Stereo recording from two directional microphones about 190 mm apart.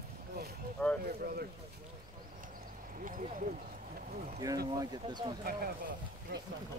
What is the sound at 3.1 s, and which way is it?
Speech, 45° right (ahead or behind).